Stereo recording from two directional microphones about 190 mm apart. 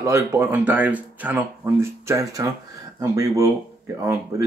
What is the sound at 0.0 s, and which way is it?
Speech, 15° right (ahead or behind).